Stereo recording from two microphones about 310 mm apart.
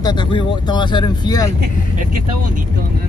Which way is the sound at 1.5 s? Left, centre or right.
Right.